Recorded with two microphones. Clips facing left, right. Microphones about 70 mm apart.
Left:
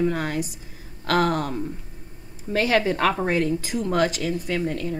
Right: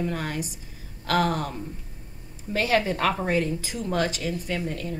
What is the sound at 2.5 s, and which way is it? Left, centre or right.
A woman's voice, left.